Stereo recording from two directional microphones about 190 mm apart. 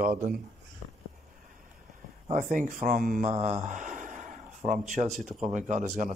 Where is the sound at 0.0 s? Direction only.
45° right (ahead or behind).